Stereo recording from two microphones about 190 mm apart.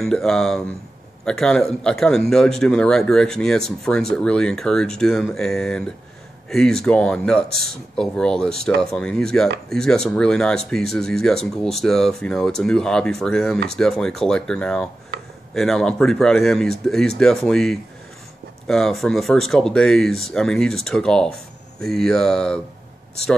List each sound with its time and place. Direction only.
0.0 s speech: centre (ahead or behind)